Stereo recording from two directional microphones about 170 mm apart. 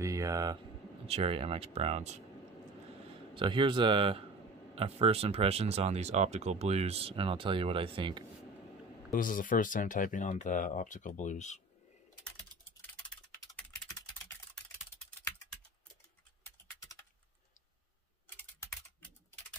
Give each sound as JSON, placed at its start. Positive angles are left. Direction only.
{"t": 0.0, "sound": "speech", "side_deg": -20}
{"t": 1.0, "sound": "speech", "side_deg": -35}
{"t": 3.3, "sound": "speech", "side_deg": -30}
{"t": 9.1, "sound": "speech", "side_deg": 55}